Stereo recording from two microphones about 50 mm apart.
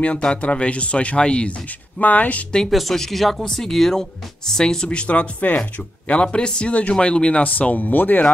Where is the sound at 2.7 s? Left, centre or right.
Centre.